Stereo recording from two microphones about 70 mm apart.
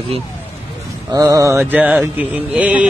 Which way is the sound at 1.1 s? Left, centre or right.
Right.